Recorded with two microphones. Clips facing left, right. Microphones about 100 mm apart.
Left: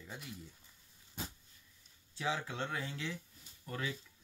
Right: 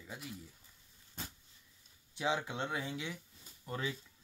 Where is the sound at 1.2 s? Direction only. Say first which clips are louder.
Left 2 dB; 5° left (ahead or behind).